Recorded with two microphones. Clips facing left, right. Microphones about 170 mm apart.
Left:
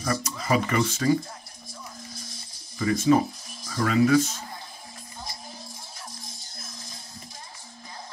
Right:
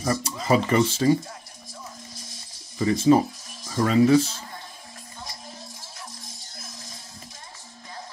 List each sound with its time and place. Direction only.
0.0 s speech: 25° right (ahead or behind)
2.8 s speech: 30° right (ahead or behind)